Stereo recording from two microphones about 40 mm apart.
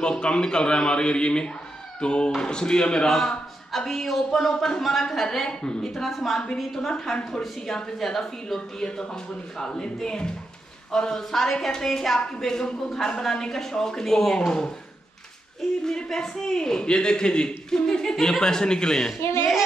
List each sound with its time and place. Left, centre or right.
0.0 s a man's voice: left
3.1 s speech: centre
6.0 s a woman's voice: centre
6.3 s a man's voice: centre
15.8 s a man's voice: centre